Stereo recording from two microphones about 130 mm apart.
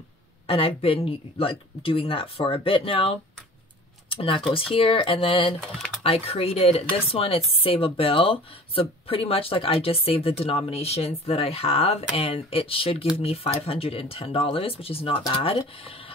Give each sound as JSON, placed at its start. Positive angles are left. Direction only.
{"t": 0.5, "sound": "speech", "side_deg": 45}